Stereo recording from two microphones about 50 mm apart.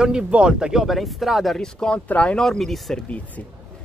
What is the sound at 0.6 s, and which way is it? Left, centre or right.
Speech, centre.